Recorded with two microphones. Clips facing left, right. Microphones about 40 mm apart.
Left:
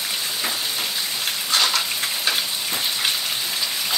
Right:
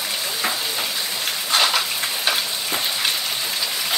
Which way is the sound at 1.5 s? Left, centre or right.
Centre.